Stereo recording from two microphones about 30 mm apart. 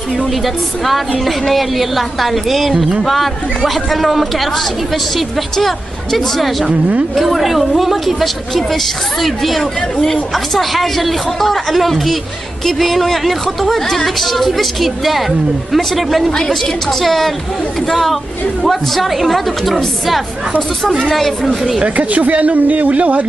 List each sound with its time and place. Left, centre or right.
0.8 s a woman's voice: centre
21.8 s a woman's voice: right